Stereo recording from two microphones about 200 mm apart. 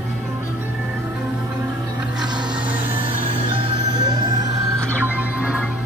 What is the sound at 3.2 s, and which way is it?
Music, 30° right (ahead or behind).